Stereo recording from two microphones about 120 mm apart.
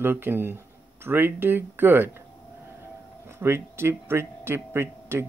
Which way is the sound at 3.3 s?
20° right (ahead or behind).